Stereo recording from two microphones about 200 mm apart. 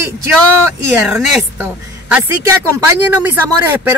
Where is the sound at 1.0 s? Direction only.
5° right (ahead or behind).